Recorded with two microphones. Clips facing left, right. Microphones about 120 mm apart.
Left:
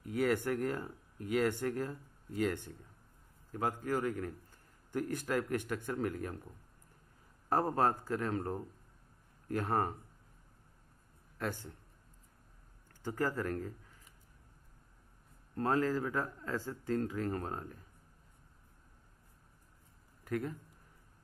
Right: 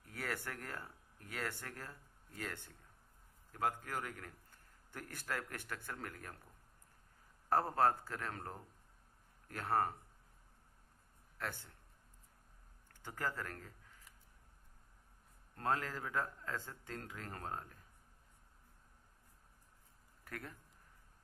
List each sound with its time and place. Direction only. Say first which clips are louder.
0.0 s a man's voice: left 12 dB; 15° left (ahead or behind)
7.4 s a man's voice: left 2 dB; 15° left (ahead or behind)
11.3 s a man's voice: left 6 dB; 15° left (ahead or behind)
13.0 s speech: left 8 dB; 15° left (ahead or behind)
15.5 s a man's voice: left 7 dB; 15° left (ahead or behind)
20.2 s a man's voice: left 12 dB; 20° left (ahead or behind)